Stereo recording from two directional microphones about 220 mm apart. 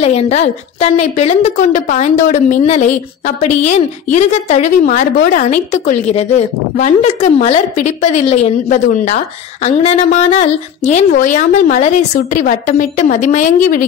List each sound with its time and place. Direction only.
0.0 s a woman's voice: 30° left (ahead or behind)